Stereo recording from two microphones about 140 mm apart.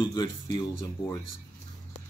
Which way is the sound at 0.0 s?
30° left (ahead or behind).